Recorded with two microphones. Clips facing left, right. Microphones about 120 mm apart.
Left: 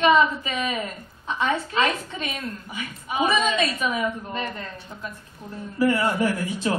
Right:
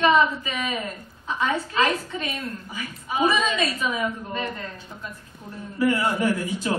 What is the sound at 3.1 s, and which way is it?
Speech, 25° left (ahead or behind).